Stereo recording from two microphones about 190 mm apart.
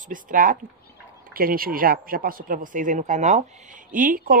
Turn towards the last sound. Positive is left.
turn(degrees=-45)  # may be behind; listen again after turning